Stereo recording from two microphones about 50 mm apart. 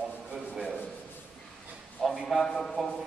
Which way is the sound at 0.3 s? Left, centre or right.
Centre.